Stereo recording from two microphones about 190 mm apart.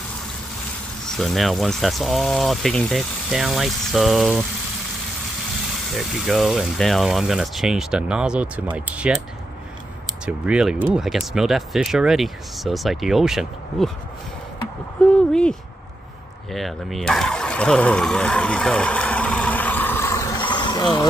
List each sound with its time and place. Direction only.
1.1 s speech: centre (ahead or behind)
5.9 s speech: centre (ahead or behind)
10.2 s speech: 5° right (ahead or behind)
15.0 s speech: 5° left (ahead or behind)
16.5 s vehicle: centre (ahead or behind)
20.3 s a sound: 25° left (ahead or behind)